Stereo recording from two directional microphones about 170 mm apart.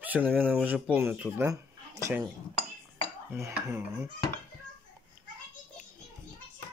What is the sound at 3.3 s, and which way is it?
Speech, 15° right (ahead or behind).